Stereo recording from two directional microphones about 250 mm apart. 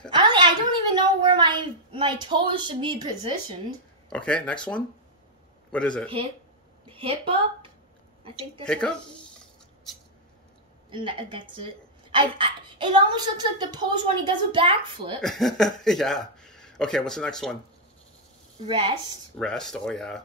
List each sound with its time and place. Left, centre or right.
0.1 s a sound: centre
4.1 s speech: centre
6.9 s a woman's voice: right
8.6 s speech: centre
10.9 s speech: centre
15.2 s speech: centre
18.7 s speech: right
19.3 s speech: centre